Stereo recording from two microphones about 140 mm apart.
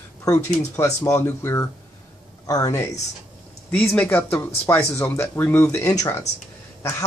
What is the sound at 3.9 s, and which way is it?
Speech, 10° left (ahead or behind).